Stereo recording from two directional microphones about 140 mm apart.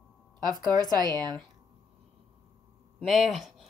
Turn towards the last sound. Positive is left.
turn(degrees=0)  # may be behind; listen again after turning